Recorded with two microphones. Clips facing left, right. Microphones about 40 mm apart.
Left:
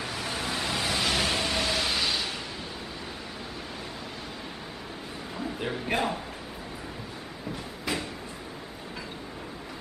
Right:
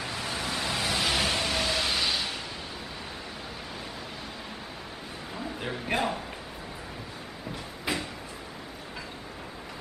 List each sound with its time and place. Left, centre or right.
0.0 s vehicle: centre
5.4 s a man's voice: centre
7.9 s a sound: centre